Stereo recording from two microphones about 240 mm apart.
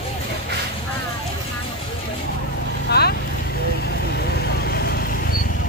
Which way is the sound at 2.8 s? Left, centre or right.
Left.